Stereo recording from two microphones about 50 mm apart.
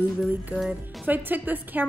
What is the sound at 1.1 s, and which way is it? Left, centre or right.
Speech, right.